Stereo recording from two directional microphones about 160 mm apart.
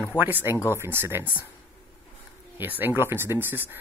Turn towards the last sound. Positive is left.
turn(degrees=-10)  # may be behind; listen again after turning